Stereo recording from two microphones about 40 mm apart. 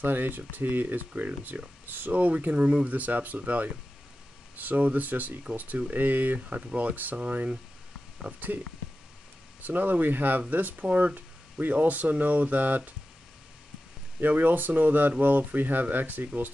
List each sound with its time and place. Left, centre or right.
0.0 s speech: right
2.5 s speech: right
2.9 s speech: right
9.6 s speech: right
14.2 s speech: right